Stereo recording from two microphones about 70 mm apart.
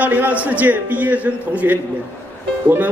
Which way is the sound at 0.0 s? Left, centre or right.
Right.